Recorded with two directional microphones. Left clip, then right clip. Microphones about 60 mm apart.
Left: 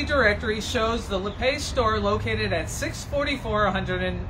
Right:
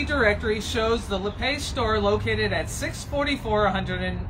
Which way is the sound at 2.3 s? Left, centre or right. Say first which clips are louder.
Right 1 dB; left.